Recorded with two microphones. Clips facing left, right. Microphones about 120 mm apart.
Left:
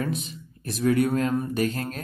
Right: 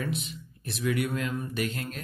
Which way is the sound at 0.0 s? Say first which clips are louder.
Left 4 dB; 40° left (ahead or behind).